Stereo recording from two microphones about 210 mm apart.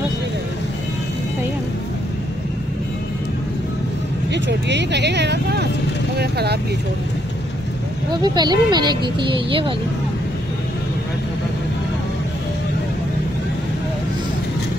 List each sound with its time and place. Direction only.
4.3 s speech: 55° right (ahead or behind)
8.1 s speech: 20° right (ahead or behind)